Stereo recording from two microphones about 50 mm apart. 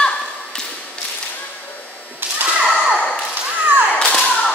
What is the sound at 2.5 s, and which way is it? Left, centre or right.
Whip, right.